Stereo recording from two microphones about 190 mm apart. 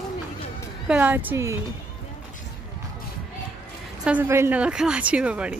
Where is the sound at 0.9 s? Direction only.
10° right (ahead or behind).